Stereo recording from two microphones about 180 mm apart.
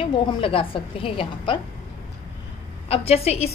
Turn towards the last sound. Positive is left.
turn(degrees=35)  # may be behind; listen again after turning